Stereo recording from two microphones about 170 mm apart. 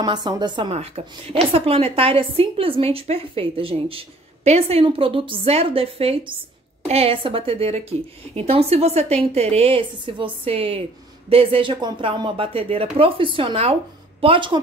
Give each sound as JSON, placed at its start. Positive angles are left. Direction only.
{"t": 0.0, "sound": "a woman's voice", "side_deg": -25}